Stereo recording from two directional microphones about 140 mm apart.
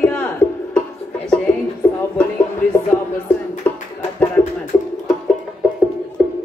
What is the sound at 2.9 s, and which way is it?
Music, 15° left (ahead or behind).